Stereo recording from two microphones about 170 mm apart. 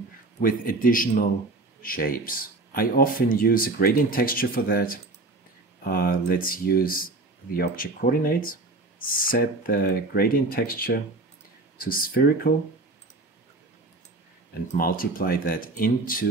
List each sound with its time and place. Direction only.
0.4 s speech: 55° left (ahead or behind)
14.8 s speech: 55° left (ahead or behind)